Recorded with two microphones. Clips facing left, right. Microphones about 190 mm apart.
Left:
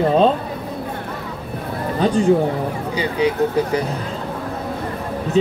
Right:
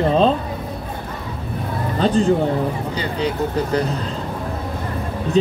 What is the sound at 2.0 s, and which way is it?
Speech, 10° left (ahead or behind).